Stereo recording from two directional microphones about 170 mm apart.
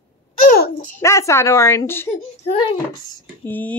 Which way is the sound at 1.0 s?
15° left (ahead or behind).